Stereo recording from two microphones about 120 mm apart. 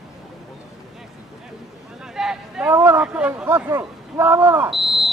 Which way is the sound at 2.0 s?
5° right (ahead or behind).